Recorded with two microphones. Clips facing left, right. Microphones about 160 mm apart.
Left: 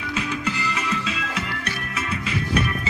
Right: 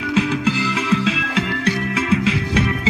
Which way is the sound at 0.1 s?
90° right.